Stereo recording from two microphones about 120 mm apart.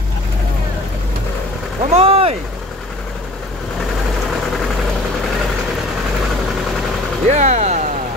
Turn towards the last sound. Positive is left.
turn(degrees=-70)  # may be behind; listen again after turning